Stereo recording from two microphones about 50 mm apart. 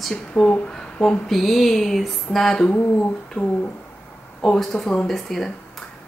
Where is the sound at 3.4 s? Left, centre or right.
Left.